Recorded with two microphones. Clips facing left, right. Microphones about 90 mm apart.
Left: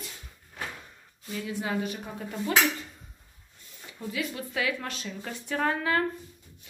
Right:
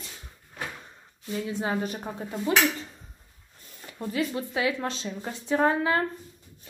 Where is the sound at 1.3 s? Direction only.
30° right (ahead or behind).